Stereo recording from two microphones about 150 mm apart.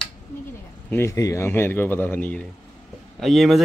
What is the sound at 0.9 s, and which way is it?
Speech, 20° left (ahead or behind).